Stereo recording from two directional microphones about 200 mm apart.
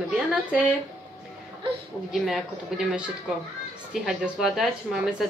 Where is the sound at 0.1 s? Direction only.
5° right (ahead or behind).